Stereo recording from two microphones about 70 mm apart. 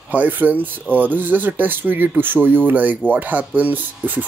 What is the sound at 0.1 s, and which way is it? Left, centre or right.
Speech, right.